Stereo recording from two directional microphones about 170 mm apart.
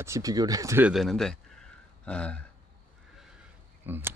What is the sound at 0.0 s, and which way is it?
Speech, 20° right (ahead or behind).